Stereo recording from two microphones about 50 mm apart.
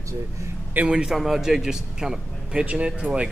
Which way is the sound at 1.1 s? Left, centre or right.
Centre.